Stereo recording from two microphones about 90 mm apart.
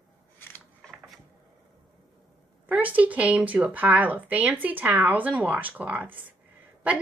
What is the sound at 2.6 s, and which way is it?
Speech, 15° right (ahead or behind).